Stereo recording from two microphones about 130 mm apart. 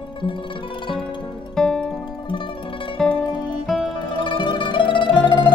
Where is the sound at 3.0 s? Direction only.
Centre (ahead or behind).